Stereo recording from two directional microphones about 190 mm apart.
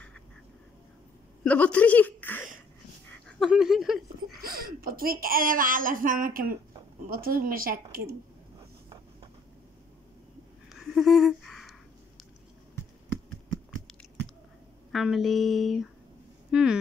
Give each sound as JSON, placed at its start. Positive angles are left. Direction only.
{"t": 1.4, "sound": "a woman's voice", "side_deg": 5}
{"t": 3.1, "sound": "a sound", "side_deg": 5}
{"t": 3.4, "sound": "speech", "side_deg": -5}
{"t": 4.4, "sound": "speech", "side_deg": -50}
{"t": 10.7, "sound": "a sound", "side_deg": 0}
{"t": 14.9, "sound": "speech", "side_deg": 0}